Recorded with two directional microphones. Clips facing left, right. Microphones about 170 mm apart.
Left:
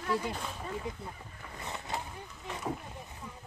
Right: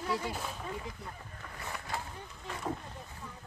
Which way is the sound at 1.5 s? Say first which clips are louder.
Left 1 dB; 20° left (ahead or behind).